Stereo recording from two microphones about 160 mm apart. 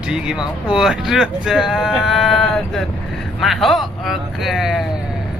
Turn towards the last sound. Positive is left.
turn(degrees=0)  # may be behind; listen again after turning